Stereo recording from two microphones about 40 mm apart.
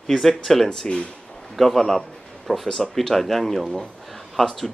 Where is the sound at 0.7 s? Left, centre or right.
Centre.